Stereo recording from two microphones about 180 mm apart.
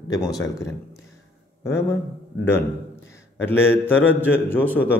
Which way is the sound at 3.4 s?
10° left (ahead or behind).